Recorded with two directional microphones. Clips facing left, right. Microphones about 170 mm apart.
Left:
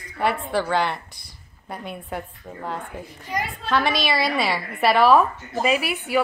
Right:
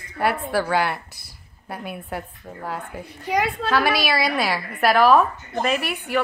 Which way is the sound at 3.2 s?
70° right (ahead or behind).